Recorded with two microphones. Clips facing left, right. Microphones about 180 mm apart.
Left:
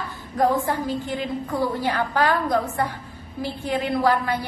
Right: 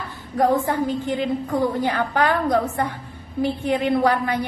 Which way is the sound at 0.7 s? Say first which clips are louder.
Right 3 dB; 20° right (ahead or behind).